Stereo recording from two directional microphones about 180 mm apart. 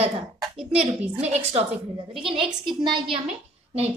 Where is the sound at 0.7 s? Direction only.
35° right (ahead or behind).